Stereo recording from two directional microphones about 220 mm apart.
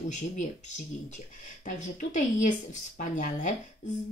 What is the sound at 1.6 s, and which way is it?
A woman's voice, 35° left (ahead or behind).